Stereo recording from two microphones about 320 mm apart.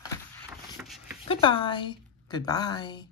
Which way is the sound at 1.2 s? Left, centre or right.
Centre.